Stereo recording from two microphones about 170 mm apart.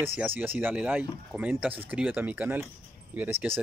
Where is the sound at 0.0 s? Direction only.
10° right (ahead or behind).